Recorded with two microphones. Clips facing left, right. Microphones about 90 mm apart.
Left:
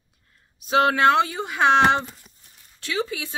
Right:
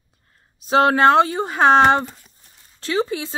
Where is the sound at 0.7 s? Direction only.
35° right (ahead or behind).